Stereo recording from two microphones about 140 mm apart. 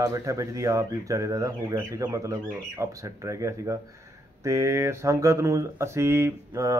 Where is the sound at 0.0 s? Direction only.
20° right (ahead or behind).